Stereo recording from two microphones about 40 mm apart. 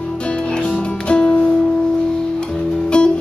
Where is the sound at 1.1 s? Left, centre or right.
Left.